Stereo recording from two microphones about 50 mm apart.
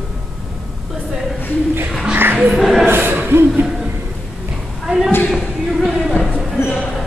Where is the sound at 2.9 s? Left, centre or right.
Right.